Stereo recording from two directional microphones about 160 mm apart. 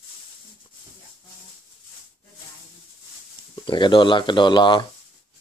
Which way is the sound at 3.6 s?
30° left (ahead or behind).